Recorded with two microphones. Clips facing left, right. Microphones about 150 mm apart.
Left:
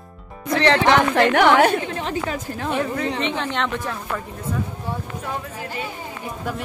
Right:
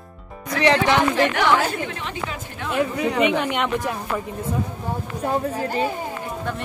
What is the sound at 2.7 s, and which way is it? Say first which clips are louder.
Speech: right 3 dB; 10° right (ahead or behind).